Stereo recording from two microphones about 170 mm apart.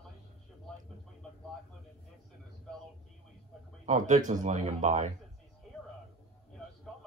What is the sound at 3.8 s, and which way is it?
A man's voice, 45° right (ahead or behind).